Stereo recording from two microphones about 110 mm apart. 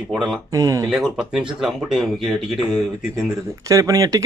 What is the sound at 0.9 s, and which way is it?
Speech, 5° right (ahead or behind).